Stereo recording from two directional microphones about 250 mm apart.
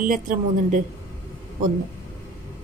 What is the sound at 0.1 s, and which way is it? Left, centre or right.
Speech, right.